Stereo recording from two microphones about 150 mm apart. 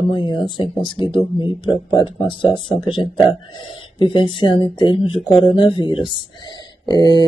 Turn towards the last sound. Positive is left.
turn(degrees=30)  # may be behind; listen again after turning